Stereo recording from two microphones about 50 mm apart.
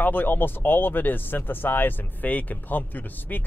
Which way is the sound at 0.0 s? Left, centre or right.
Left.